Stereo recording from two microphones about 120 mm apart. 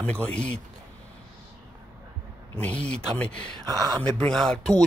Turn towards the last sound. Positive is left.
turn(degrees=5)  # may be behind; listen again after turning